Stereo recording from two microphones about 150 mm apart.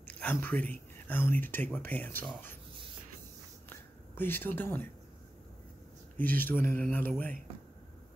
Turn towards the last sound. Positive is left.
turn(degrees=10)  # may be behind; listen again after turning